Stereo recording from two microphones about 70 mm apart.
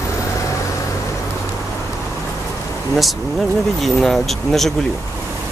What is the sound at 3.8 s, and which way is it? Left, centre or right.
Speech, centre.